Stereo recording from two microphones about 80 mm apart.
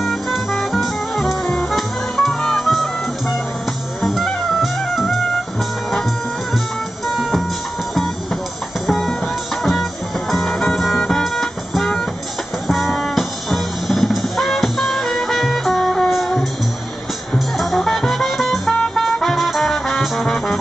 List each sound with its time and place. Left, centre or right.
0.0 s music: centre
7.1 s music: centre
8.8 s music: centre